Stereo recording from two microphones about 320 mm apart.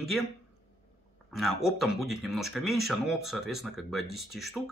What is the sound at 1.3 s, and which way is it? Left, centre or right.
Speech, centre.